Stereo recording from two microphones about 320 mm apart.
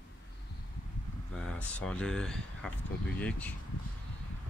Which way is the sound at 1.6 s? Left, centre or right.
Centre.